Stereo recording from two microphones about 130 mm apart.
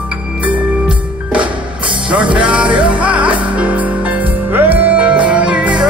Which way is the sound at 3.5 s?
10° right (ahead or behind).